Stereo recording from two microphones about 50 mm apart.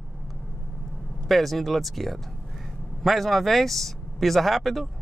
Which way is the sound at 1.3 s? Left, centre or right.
Centre.